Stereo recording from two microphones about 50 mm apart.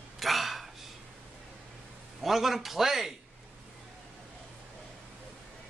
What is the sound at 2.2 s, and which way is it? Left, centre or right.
Speech, centre.